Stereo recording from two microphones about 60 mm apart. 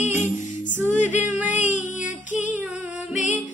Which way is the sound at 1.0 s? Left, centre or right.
Right.